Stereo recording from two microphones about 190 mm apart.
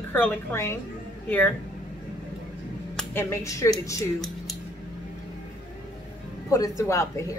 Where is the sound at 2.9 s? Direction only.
10° left (ahead or behind).